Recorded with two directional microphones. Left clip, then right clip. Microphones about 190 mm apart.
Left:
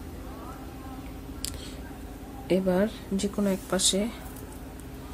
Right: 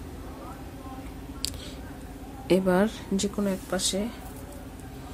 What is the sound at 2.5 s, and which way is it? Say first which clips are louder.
Speech: right 2 dB; 10° right (ahead or behind).